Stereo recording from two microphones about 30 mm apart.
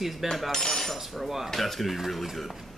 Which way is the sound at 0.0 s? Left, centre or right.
Centre.